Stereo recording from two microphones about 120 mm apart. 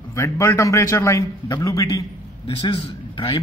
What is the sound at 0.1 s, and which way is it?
A man's voice, 25° left (ahead or behind).